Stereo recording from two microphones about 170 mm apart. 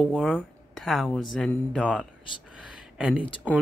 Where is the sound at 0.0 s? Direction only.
Centre (ahead or behind).